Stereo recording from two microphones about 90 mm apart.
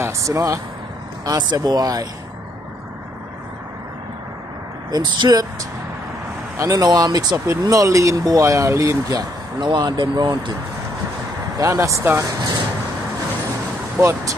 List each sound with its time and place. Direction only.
0.0 s speech: 35° right (ahead or behind)
4.9 s speech: 50° right (ahead or behind)
6.5 s speech: 40° right (ahead or behind)
7.6 s speech: 40° right (ahead or behind); by 10.5 s 60° right (ahead or behind)
11.5 s speech: 35° right (ahead or behind)
14.0 s speech: 35° right (ahead or behind)